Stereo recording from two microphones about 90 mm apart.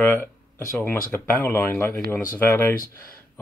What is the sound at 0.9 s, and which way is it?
Speech, 25° left (ahead or behind).